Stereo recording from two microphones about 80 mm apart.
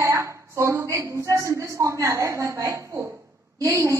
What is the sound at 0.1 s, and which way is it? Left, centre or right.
A woman's voice, right.